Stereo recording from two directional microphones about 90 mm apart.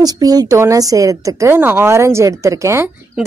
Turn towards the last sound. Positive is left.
turn(degrees=-30)  # may be behind; listen again after turning